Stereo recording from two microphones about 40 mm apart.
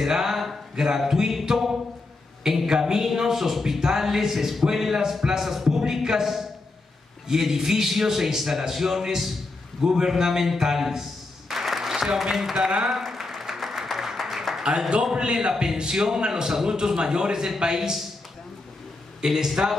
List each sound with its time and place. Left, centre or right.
0.0 s a man's voice: centre
7.2 s a sound: centre
15.1 s a man's voice: right
15.5 s a man's voice: centre
19.2 s a man's voice: centre